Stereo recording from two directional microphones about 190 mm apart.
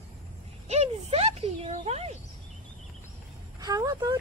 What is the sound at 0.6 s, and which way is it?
Speech, 35° right (ahead or behind).